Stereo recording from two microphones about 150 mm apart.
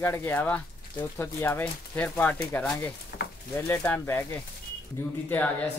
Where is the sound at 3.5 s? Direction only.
15° left (ahead or behind).